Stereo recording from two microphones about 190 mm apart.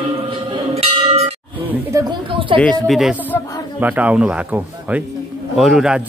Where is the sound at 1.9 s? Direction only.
20° right (ahead or behind).